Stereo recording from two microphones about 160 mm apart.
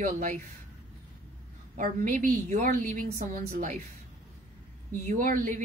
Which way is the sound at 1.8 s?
55° right (ahead or behind).